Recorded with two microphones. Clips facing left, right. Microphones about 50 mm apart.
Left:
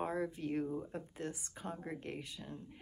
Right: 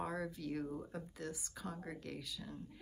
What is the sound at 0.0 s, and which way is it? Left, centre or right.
A woman's voice, left.